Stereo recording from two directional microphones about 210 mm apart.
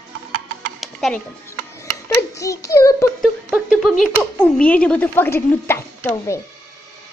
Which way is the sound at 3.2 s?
Centre (ahead or behind).